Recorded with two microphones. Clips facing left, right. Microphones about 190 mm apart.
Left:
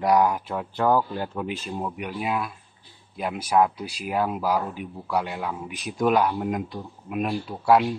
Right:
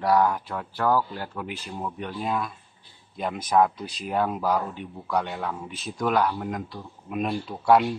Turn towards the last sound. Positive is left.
turn(degrees=0)  # may be behind; listen again after turning